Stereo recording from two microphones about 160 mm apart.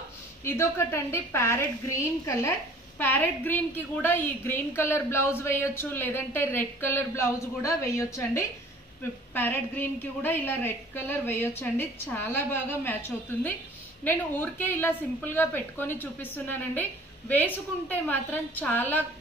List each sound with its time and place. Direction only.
0.4 s a woman's voice: 15° left (ahead or behind)